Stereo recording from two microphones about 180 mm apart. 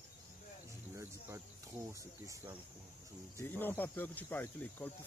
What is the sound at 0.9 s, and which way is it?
Cricket, 15° right (ahead or behind).